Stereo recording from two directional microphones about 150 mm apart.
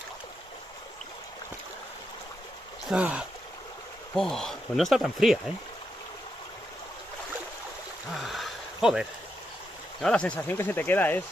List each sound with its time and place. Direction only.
2.9 s speech: 5° right (ahead or behind)
4.1 s speech: 5° left (ahead or behind)
8.1 s a sound: centre (ahead or behind)
9.9 s speech: 5° left (ahead or behind)